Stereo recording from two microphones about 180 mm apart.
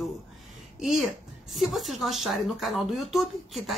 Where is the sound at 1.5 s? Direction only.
Centre (ahead or behind).